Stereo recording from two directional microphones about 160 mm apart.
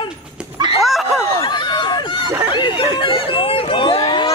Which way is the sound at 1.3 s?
30° left (ahead or behind).